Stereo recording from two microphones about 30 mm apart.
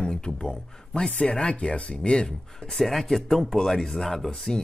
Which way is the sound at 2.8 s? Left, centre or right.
Centre.